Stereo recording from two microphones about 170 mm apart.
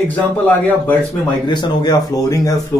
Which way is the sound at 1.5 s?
25° left (ahead or behind).